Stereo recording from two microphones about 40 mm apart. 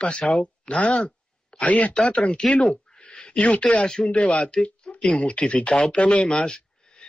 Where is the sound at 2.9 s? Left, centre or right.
Centre.